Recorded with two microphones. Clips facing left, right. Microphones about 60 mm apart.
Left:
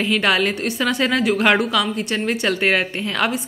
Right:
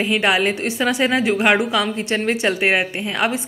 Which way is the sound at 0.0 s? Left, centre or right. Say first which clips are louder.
Right 1 dB; right.